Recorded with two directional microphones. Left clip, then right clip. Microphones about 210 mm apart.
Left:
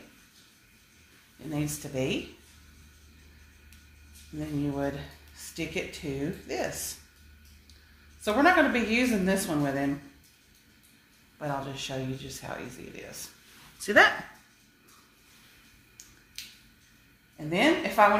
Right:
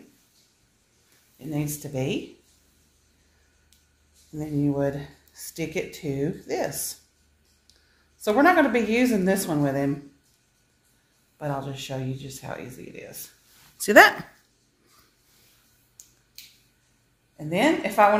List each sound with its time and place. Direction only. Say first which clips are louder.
1.5 s speech: right 3 dB; 35° right (ahead or behind)
4.4 s speech: right 6 dB; 40° right (ahead or behind)
8.2 s speech: right 3 dB; 40° right (ahead or behind)
11.3 s speech: right 2 dB; 35° right (ahead or behind)
13.7 s speech: right 6 dB; 55° right (ahead or behind)
16.0 s finger snapping: even; 35° right (ahead or behind)
17.5 s speech: right 2 dB; 40° right (ahead or behind)